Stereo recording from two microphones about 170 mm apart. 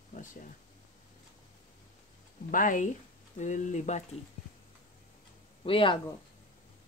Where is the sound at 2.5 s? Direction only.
50° left (ahead or behind).